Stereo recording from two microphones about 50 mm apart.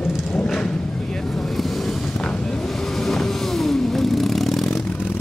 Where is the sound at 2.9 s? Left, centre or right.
Centre.